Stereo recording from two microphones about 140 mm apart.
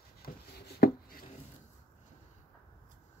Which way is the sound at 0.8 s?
90° left.